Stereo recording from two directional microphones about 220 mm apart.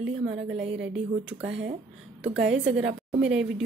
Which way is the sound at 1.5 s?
55° right (ahead or behind).